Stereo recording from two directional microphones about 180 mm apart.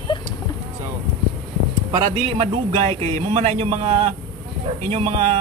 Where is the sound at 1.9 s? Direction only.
35° right (ahead or behind).